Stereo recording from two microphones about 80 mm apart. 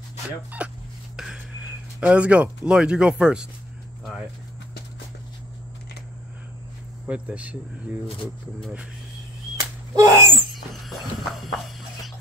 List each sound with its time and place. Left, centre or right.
0.6 s fowl: centre
1.1 s speech: centre
7.1 s speech: centre
9.9 s sneeze: right
10.5 s horse: centre